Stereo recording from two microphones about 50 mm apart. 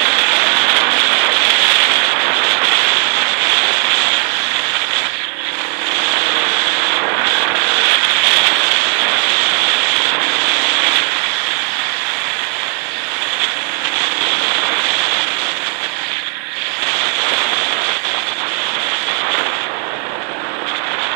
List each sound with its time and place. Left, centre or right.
0.0 s rain on surface: centre
5.9 s rub: centre
14.2 s a sound: centre
17.0 s rain on surface: centre